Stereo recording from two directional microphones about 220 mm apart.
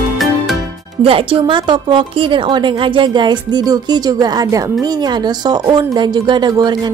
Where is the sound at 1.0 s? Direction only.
25° right (ahead or behind).